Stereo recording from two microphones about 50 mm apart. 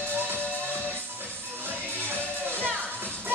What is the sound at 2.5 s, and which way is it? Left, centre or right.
Music, right.